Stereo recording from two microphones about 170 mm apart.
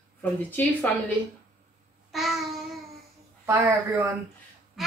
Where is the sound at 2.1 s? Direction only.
Centre (ahead or behind).